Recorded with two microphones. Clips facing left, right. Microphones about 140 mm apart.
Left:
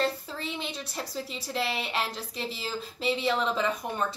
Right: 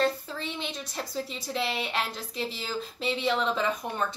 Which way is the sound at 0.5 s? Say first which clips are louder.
Left 1 dB; 35° left (ahead or behind).